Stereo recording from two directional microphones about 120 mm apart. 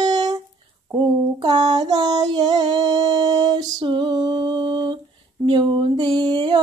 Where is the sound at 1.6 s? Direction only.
35° right (ahead or behind).